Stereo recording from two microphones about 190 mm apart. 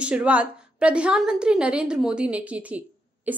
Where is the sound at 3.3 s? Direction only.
10° right (ahead or behind).